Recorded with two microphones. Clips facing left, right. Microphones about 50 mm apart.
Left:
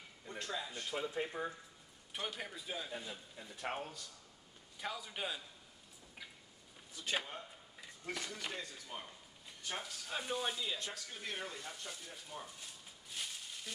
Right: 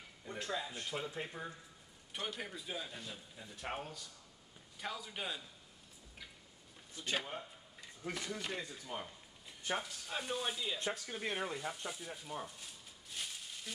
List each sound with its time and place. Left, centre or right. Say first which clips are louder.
0.2 s speech: right 2 dB; centre
7.0 s speech: even; right
7.8 s a sound: right 1 dB; centre
8.5 s speech: right 3 dB; centre
10.8 s speech: right 6 dB; right
11.5 s speech: right 5 dB; centre
12.5 s a sound: even; centre